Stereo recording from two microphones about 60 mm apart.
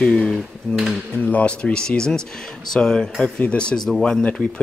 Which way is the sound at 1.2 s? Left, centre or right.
Left.